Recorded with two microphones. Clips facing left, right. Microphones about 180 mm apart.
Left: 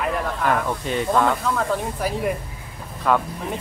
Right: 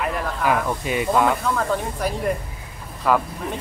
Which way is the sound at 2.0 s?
5° left (ahead or behind).